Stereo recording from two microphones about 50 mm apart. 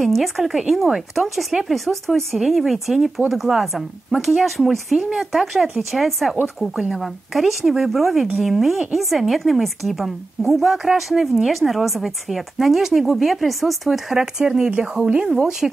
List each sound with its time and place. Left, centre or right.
0.0 s a woman's voice: centre
15.6 s speech: centre